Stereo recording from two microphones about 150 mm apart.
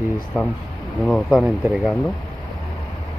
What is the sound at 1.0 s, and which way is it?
Speech, centre (ahead or behind).